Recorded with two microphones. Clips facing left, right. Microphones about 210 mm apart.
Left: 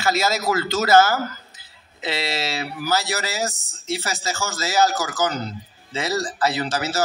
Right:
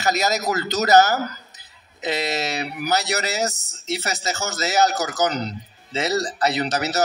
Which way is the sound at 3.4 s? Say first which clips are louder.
Right 2 dB; 40° right (ahead or behind).